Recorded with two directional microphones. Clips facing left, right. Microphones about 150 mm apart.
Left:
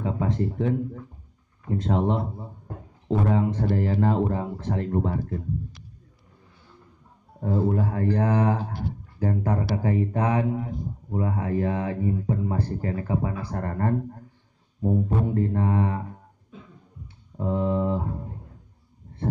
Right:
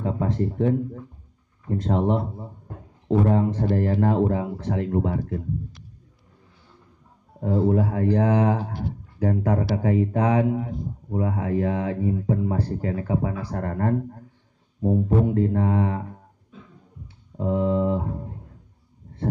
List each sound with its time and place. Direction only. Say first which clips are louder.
0.0 s speech: right 1 dB; 40° right (ahead or behind)
1.8 s speech: right 2 dB; 40° right (ahead or behind)
3.3 s speech: right 2 dB; 45° right (ahead or behind); by 5.4 s 90° right
7.3 s speech: right 3 dB; 80° right
17.4 s speech: right 2 dB; 90° right